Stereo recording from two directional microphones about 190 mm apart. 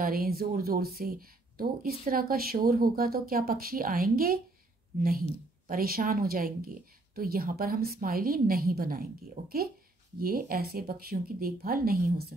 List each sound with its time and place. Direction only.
0.0 s speech: 50° right (ahead or behind)
5.7 s speech: 50° right (ahead or behind)